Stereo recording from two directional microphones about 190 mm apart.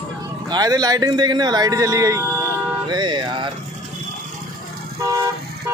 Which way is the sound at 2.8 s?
25° right (ahead or behind).